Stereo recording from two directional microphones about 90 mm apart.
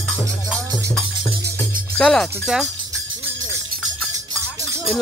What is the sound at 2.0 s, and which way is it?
Speech, 10° left (ahead or behind).